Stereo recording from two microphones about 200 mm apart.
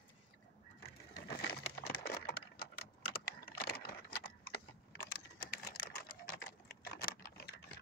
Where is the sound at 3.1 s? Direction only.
50° left (ahead or behind).